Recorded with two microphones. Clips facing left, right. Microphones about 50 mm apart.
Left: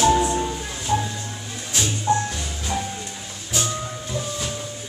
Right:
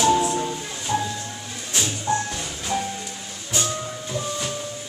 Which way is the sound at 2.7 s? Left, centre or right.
Centre.